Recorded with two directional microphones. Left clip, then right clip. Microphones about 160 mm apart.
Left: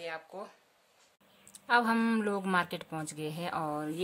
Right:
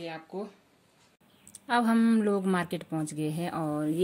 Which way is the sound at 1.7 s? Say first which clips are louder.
Even; 10° right (ahead or behind).